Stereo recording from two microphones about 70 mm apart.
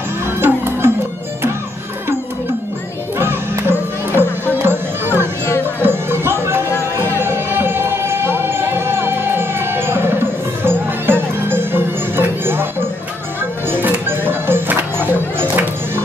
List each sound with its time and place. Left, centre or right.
0.4 s music: right
3.2 s music: right
13.7 s music: right